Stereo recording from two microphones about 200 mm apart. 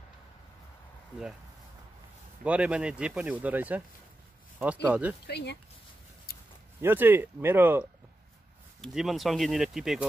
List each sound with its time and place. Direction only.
2.4 s speech: 5° right (ahead or behind)
4.8 s speech: 5° right (ahead or behind)
5.2 s speech: 55° left (ahead or behind)
6.3 s a sound: 50° left (ahead or behind)
6.8 s speech: 10° right (ahead or behind)